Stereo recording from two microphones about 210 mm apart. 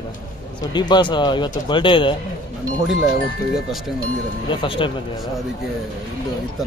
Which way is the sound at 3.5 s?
Centre (ahead or behind).